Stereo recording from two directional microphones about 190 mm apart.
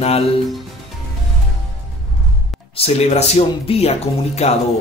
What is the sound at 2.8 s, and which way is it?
Speech, 30° left (ahead or behind).